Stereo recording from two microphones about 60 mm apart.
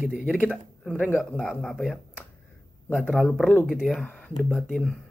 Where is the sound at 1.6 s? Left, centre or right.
Centre.